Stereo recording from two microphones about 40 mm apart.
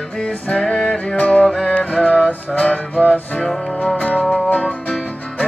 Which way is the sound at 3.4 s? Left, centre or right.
Centre.